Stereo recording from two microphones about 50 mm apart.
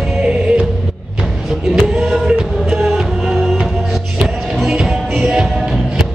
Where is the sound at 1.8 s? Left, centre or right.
Centre.